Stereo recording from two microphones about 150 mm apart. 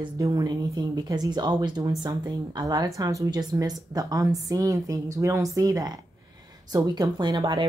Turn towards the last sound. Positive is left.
turn(degrees=-30)  # may be behind; listen again after turning